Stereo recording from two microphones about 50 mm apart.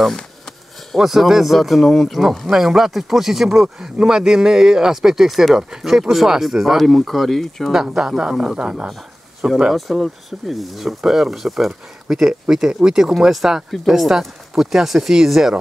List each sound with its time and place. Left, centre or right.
0.9 s speech: centre
2.5 s speech: centre
7.7 s speech: centre
9.8 s speech: centre